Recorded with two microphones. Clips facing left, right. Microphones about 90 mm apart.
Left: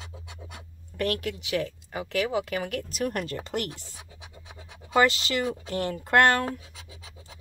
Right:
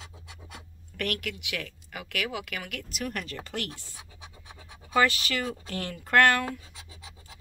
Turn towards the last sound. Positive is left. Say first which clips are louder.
# left 1 dB
turn(degrees=30)  # may be behind; listen again after turning